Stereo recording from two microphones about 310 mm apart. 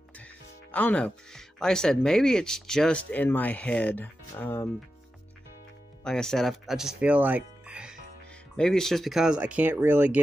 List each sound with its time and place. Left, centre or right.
0.2 s speech: centre
6.0 s speech: centre